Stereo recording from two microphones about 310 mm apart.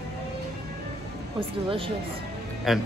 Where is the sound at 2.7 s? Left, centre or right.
Centre.